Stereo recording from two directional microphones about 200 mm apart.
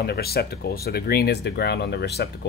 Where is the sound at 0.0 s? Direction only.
50° left (ahead or behind).